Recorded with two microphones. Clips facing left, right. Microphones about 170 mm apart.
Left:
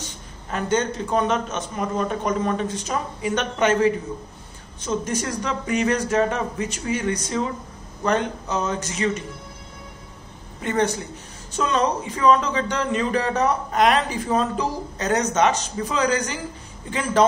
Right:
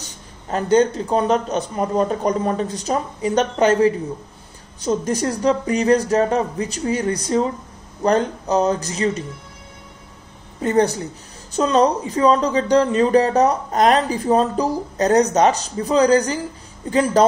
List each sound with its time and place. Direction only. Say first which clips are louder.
0.0 s a woman's voice: left 1 dB; 35° right (ahead or behind)
10.6 s a woman's voice: right 5 dB; 35° right (ahead or behind)